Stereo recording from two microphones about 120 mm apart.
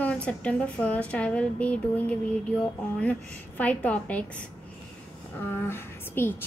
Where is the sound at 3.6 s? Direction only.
15° left (ahead or behind).